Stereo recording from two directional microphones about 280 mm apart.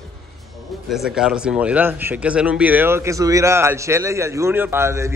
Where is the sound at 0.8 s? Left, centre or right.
Centre.